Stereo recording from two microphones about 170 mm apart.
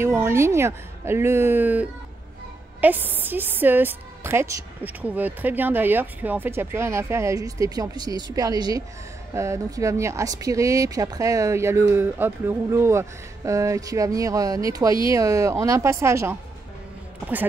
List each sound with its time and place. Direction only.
0.0 s a woman's voice: 15° right (ahead or behind)